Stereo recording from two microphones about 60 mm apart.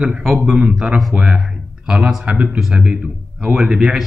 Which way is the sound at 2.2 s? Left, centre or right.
Right.